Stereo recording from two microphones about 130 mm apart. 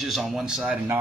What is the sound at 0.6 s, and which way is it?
Speech, 10° right (ahead or behind).